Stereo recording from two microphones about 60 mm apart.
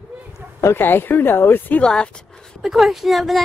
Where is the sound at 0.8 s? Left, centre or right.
Left.